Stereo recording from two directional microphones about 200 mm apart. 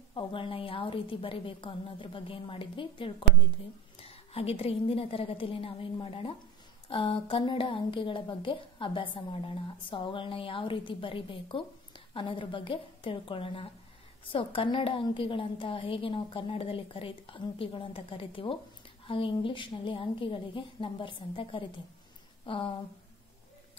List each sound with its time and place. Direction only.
0.1 s a woman's voice: 25° left (ahead or behind)